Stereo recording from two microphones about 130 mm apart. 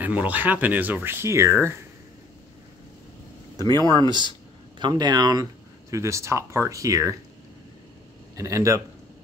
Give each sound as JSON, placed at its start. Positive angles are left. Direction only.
{"t": 0.0, "sound": "speech", "side_deg": -10}
{"t": 3.5, "sound": "speech", "side_deg": -30}
{"t": 8.4, "sound": "speech", "side_deg": -25}